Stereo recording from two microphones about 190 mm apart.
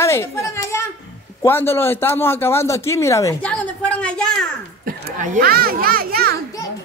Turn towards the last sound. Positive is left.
turn(degrees=-50)  # may be behind; listen again after turning